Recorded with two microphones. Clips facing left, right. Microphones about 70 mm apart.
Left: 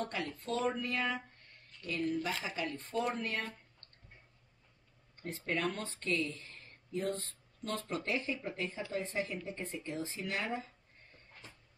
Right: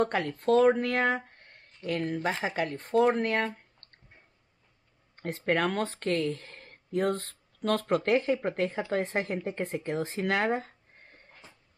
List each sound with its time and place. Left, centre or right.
0.0 s speech: right
5.1 s speech: right